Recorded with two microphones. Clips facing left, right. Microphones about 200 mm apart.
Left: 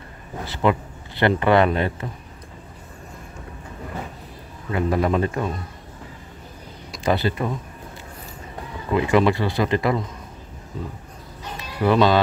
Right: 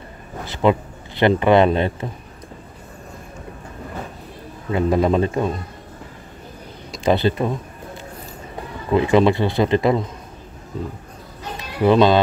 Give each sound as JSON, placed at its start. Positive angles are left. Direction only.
{"t": 0.5, "sound": "speech", "side_deg": -20}
{"t": 4.6, "sound": "speech", "side_deg": -25}
{"t": 6.9, "sound": "speech", "side_deg": -25}
{"t": 8.9, "sound": "speech", "side_deg": -25}
{"t": 11.8, "sound": "speech", "side_deg": -20}